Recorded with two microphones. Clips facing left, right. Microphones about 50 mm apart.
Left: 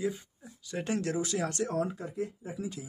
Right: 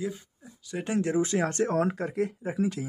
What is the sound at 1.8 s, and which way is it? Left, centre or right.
Speech, right.